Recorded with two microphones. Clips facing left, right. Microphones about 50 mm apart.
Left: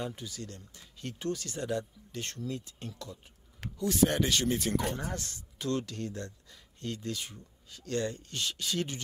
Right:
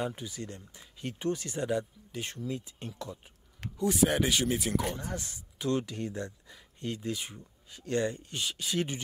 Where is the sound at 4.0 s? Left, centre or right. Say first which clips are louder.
Left 1 dB; centre.